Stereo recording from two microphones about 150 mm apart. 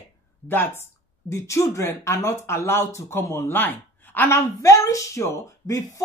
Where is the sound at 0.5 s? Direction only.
15° left (ahead or behind).